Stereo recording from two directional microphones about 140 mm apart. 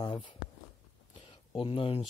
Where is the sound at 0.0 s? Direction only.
35° left (ahead or behind).